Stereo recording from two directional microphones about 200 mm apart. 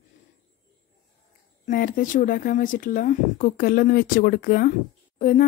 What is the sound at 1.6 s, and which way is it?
Speech, 40° left (ahead or behind).